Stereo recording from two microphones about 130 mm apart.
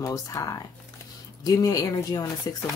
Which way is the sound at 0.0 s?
25° left (ahead or behind).